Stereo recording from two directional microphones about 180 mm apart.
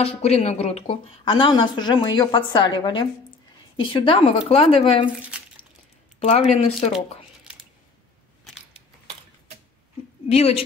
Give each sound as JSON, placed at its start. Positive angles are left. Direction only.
{"t": 0.0, "sound": "a woman's voice", "side_deg": 35}
{"t": 6.1, "sound": "speech", "side_deg": 35}
{"t": 10.2, "sound": "a woman's voice", "side_deg": 35}